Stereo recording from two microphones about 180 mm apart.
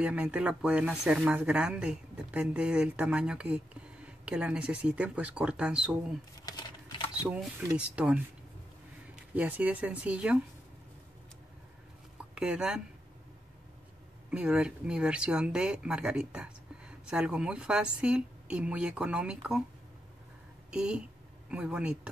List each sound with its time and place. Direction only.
0.0 s speech: 5° right (ahead or behind)
6.4 s a sound: 25° left (ahead or behind)
7.7 s speech: 5° right (ahead or behind)
12.4 s speech: 5° right (ahead or behind)
14.3 s speech: 5° right (ahead or behind)
20.7 s speech: 5° right (ahead or behind)